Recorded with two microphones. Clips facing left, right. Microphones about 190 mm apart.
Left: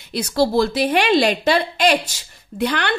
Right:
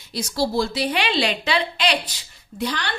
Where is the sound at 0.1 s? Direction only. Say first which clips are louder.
Left 5 dB; 60° left (ahead or behind).